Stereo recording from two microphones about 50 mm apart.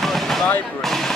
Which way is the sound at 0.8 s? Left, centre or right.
Centre.